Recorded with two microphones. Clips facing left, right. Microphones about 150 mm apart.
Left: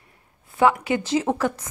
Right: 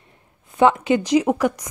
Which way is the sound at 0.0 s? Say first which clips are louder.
Right 3 dB; 20° right (ahead or behind).